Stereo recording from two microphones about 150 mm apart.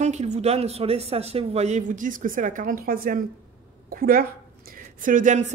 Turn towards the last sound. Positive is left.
turn(degrees=-55)  # may be behind; listen again after turning